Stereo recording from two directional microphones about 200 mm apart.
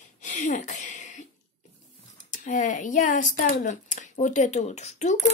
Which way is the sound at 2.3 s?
40° left (ahead or behind).